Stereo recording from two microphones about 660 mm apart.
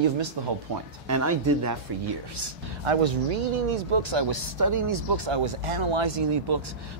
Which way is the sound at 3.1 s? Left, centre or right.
Right.